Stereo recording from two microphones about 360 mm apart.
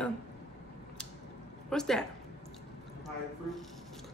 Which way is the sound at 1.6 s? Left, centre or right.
Centre.